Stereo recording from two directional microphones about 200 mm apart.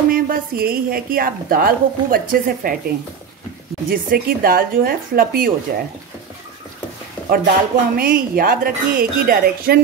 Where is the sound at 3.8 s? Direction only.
45° right (ahead or behind).